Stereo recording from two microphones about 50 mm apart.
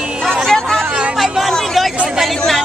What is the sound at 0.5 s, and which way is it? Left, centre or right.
Hubbub, centre.